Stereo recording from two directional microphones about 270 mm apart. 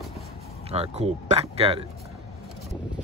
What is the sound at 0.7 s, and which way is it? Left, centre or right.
Speech, right.